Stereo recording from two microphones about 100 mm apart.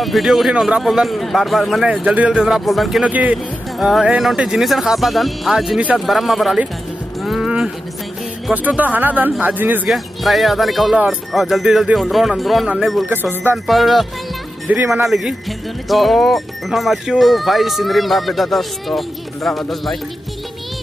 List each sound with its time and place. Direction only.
0.0 s speech: centre (ahead or behind)
2.0 s speech: 10° right (ahead or behind)
3.0 s speech: 15° right (ahead or behind)
8.6 s speech: 15° right (ahead or behind)
9.8 s speech: centre (ahead or behind)
13.1 s music: 20° right (ahead or behind)
13.7 s speech: centre (ahead or behind)